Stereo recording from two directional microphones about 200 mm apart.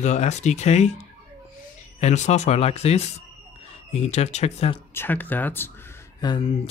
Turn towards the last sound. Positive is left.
turn(degrees=20)  # may be behind; listen again after turning